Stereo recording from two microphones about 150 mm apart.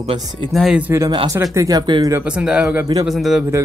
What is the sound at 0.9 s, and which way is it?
Speech, 20° right (ahead or behind).